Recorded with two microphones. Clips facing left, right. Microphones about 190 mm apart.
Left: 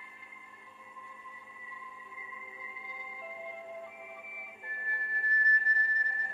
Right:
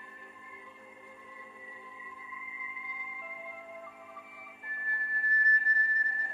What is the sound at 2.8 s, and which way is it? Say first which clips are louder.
Music: left 4 dB; 30° left (ahead or behind).